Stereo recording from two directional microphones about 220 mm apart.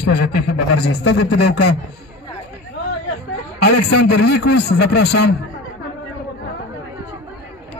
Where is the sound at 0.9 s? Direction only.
85° left.